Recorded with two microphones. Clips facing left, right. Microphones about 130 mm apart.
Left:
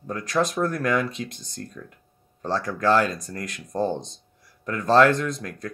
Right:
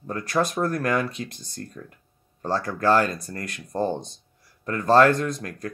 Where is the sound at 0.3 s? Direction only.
5° right (ahead or behind).